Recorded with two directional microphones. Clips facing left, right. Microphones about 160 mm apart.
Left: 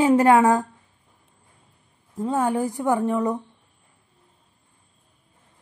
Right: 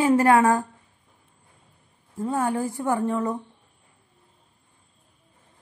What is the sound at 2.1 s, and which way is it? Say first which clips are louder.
A woman's voice: left 2 dB; 15° left (ahead or behind).